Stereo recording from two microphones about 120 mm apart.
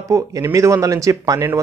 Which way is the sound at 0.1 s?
25° right (ahead or behind).